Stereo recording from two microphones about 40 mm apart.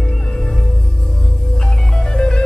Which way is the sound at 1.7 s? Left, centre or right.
Centre.